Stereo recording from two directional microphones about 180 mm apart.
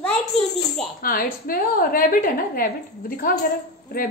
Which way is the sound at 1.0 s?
55° left (ahead or behind).